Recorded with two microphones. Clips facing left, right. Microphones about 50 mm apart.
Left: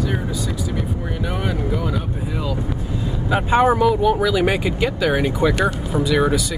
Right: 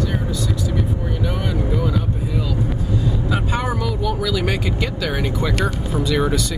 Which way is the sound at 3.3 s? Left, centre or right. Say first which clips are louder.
Left 11 dB; left.